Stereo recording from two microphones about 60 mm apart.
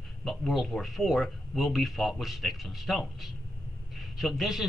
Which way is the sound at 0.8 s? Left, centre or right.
Centre.